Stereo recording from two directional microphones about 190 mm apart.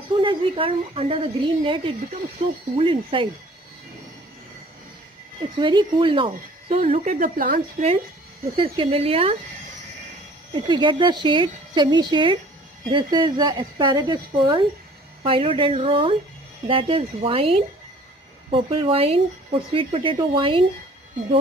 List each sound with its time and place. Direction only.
0.1 s speech: 25° right (ahead or behind)
5.6 s speech: 25° right (ahead or behind); by 7.6 s 50° right (ahead or behind)
8.5 s speech: 30° right (ahead or behind)
10.5 s speech: 25° right (ahead or behind)